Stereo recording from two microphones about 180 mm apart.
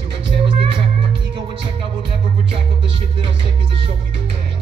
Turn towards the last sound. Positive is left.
turn(degrees=-30)  # may be behind; listen again after turning